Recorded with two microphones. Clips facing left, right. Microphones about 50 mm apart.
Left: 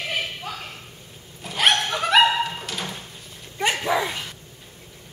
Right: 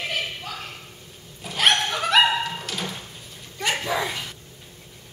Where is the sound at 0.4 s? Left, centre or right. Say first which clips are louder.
Left 1 dB; centre.